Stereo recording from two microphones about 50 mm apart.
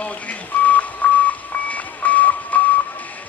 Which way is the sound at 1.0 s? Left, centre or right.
Left.